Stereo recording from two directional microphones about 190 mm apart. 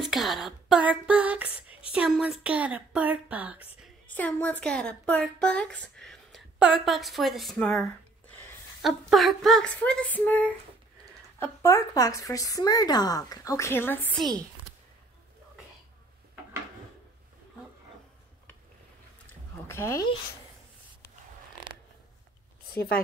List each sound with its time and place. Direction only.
0.0 s speech: centre (ahead or behind)
4.1 s a woman's voice: 10° left (ahead or behind)
19.7 s a woman's voice: 15° left (ahead or behind)
22.7 s speech: 55° left (ahead or behind)